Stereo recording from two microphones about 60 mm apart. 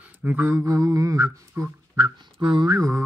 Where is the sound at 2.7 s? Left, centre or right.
Right.